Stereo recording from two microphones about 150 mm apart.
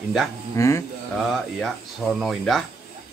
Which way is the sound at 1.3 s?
Centre (ahead or behind).